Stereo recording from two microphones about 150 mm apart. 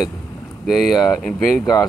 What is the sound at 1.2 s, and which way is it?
Speech, 5° left (ahead or behind).